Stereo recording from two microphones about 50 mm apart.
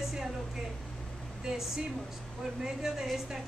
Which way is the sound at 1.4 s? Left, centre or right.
Centre.